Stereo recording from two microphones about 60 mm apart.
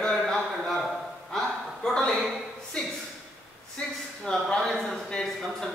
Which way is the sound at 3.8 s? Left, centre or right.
Centre.